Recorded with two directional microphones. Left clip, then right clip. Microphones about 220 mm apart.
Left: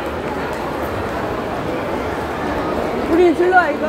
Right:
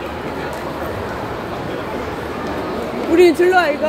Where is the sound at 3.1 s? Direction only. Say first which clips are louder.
Right 1 dB; 15° right (ahead or behind).